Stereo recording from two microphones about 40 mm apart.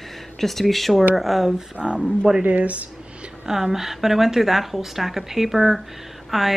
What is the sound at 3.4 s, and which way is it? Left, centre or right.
Speech, centre.